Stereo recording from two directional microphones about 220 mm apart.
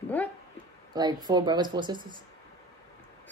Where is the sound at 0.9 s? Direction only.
20° right (ahead or behind).